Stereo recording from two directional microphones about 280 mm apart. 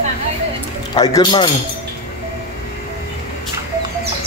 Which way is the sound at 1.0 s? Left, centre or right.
Centre.